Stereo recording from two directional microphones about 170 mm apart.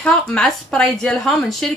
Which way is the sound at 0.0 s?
5° left (ahead or behind).